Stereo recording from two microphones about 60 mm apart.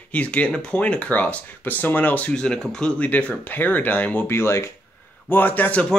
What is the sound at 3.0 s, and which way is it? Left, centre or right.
Speech, left.